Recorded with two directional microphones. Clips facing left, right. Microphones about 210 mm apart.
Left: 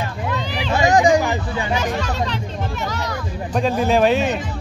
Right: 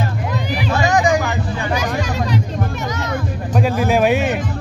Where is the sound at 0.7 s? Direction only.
25° left (ahead or behind).